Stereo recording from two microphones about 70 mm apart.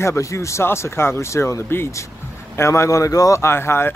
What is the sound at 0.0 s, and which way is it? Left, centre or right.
Speech, left.